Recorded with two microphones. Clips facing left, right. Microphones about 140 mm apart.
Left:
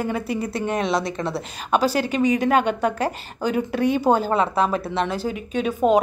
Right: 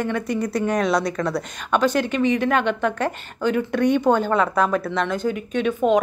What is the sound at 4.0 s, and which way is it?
A woman's voice, 35° left (ahead or behind).